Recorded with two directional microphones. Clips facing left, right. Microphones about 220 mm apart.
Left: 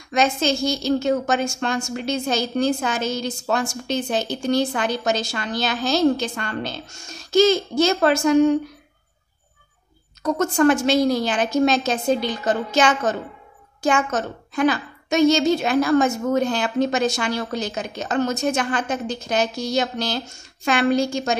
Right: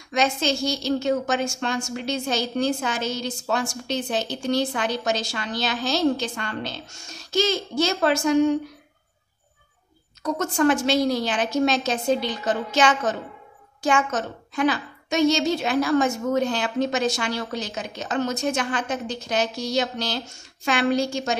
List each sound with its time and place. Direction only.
0.1 s a woman's voice: 45° left (ahead or behind)
10.2 s a woman's voice: 45° left (ahead or behind)